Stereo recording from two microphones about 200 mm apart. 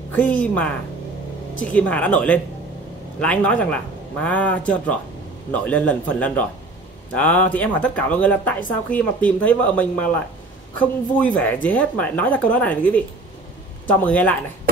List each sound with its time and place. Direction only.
0.1 s speech: 10° left (ahead or behind)